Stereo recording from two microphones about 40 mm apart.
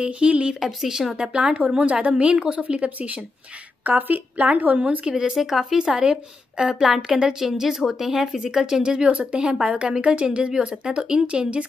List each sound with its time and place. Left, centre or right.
0.0 s speech: right
0.6 s a woman's voice: centre
1.1 s a woman's voice: right
3.8 s a woman's voice: right
5.0 s speech: right
5.3 s a woman's voice: centre
5.8 s a woman's voice: centre